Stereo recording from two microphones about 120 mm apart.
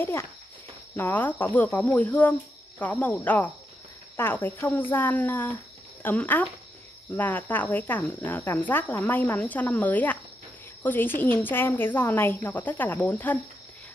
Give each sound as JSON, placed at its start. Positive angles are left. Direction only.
{"t": 0.9, "sound": "speech", "side_deg": 15}